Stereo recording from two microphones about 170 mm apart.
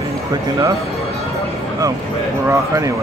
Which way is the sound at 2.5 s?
20° right (ahead or behind).